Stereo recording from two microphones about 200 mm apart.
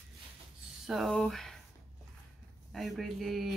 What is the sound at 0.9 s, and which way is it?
Speech, centre (ahead or behind).